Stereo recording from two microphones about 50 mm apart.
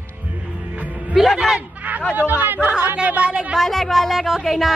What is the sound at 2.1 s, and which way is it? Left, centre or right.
Speech, right.